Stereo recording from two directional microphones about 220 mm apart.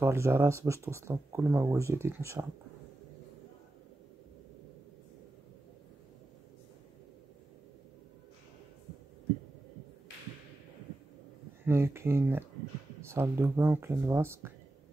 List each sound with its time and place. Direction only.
0.0 s speech: 10° right (ahead or behind)
11.6 s speech: 10° right (ahead or behind)